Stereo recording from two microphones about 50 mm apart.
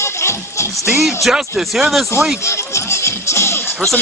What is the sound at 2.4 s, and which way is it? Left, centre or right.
Music, left.